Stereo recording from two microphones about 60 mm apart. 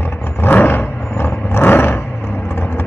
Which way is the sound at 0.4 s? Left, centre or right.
Left.